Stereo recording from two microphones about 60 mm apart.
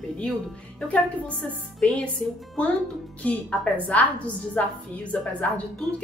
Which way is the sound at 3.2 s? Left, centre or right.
Left.